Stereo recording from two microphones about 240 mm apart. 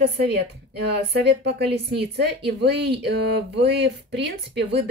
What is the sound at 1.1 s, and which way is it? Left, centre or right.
A woman's voice, right.